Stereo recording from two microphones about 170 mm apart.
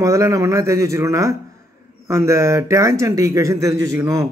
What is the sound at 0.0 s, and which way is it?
A man's voice, 20° right (ahead or behind).